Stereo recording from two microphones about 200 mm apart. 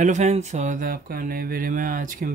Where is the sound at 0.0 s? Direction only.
35° right (ahead or behind).